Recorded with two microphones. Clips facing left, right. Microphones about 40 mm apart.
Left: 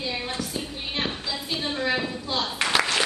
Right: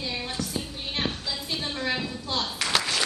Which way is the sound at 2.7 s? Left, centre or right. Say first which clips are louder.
Left 3 dB; centre.